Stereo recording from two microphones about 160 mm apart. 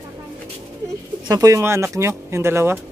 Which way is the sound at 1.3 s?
20° right (ahead or behind).